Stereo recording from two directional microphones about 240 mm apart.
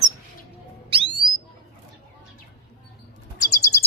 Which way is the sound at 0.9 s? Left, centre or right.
Right.